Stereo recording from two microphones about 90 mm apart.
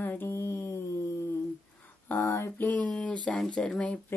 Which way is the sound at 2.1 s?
30° left (ahead or behind).